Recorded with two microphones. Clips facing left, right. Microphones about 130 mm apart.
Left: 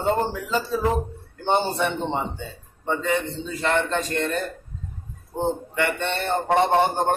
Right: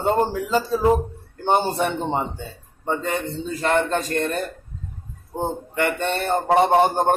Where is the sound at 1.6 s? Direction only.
45° right (ahead or behind).